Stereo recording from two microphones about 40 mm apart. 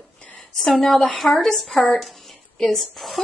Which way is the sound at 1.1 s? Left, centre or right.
Centre.